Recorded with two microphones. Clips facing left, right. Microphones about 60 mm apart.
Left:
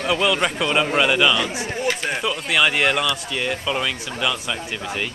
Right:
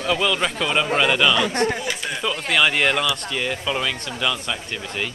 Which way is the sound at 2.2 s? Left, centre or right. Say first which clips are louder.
Right 3 dB; centre.